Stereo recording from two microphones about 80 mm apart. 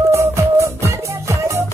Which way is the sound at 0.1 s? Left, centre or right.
Right.